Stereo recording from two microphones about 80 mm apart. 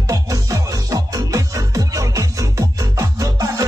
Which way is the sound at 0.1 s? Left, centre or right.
Right.